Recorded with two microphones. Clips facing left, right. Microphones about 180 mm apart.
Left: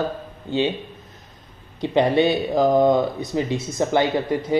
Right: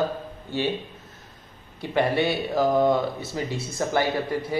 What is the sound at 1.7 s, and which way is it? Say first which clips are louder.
Speech: left 5 dB; 20° left (ahead or behind).